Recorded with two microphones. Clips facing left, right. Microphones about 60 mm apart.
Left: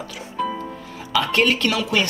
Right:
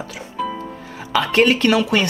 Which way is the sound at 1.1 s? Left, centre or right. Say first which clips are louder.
Right 3 dB; right.